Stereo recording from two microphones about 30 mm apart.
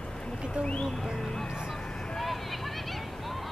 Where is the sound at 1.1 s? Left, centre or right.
Centre.